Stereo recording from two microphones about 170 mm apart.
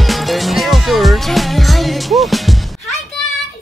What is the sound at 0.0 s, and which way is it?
Music, centre (ahead or behind).